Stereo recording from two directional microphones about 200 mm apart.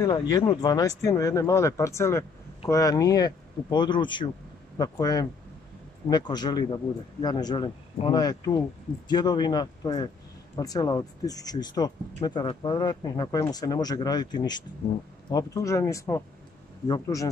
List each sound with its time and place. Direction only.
0.3 s speech: 20° left (ahead or behind)